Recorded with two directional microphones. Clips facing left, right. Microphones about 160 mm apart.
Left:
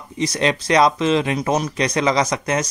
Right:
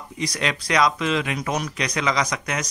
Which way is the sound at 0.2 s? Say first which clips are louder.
Left 6 dB; 25° left (ahead or behind).